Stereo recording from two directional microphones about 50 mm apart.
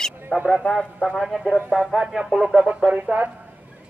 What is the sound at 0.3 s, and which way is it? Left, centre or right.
Speech, centre.